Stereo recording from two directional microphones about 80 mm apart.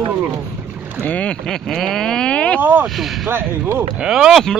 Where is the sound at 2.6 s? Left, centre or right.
Right.